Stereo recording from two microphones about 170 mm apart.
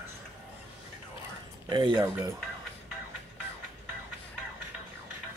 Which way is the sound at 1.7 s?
25° right (ahead or behind).